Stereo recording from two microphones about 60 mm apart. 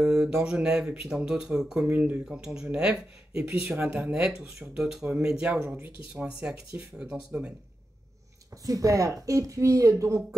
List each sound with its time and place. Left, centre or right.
0.4 s speech: centre
1.9 s speech: right
2.3 s speech: centre
5.7 s speech: right
6.2 s speech: centre
8.6 s speech: right